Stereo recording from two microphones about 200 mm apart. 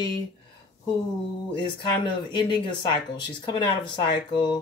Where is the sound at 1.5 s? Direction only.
25° left (ahead or behind).